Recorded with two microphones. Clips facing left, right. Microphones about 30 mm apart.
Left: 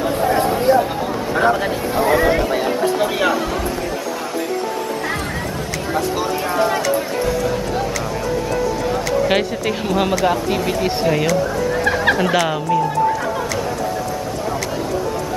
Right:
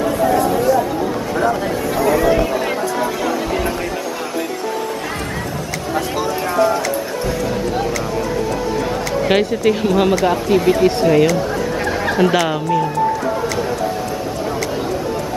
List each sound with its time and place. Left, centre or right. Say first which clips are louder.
0.3 s chatter: left 1 dB; left
1.3 s speech: left 3 dB; left
9.3 s speech: right 4 dB; centre